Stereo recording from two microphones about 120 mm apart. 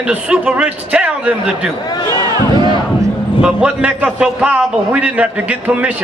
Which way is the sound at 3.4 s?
10° right (ahead or behind).